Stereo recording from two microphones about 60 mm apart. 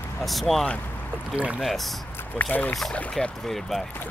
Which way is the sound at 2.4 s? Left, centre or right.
Left.